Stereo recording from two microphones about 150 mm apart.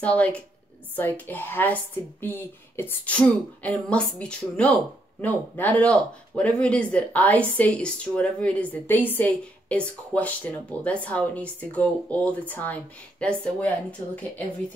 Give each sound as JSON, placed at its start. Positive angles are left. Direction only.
{"t": 0.0, "sound": "speech", "side_deg": 10}